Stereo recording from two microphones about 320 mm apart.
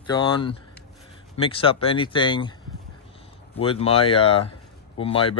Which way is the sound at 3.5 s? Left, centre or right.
Centre.